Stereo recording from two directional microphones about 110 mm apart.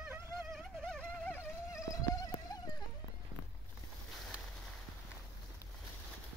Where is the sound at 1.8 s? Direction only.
30° left (ahead or behind).